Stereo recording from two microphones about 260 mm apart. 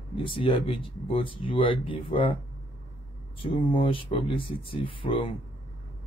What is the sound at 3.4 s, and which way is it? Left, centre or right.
Speech, centre.